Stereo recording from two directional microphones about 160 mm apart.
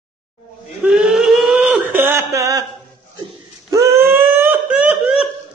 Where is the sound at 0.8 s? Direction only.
5° right (ahead or behind); by 2.6 s 20° right (ahead or behind).